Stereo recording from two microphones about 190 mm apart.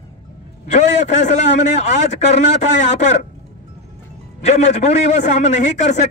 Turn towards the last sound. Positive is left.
turn(degrees=40)  # may be behind; listen again after turning